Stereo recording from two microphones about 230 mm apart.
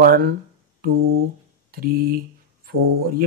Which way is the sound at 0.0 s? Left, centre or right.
Right.